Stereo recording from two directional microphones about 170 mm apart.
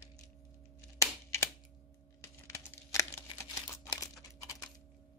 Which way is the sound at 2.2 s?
15° left (ahead or behind).